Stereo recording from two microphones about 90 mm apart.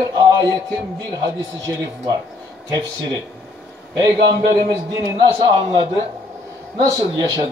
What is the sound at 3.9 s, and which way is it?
A man's voice, 50° right (ahead or behind).